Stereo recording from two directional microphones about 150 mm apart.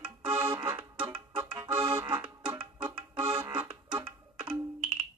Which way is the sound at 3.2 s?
30° right (ahead or behind).